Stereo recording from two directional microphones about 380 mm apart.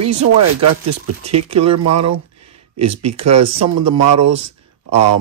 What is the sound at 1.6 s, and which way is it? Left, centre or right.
Speech, right.